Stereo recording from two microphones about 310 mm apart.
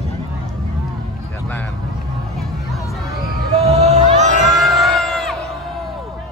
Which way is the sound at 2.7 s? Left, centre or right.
Centre.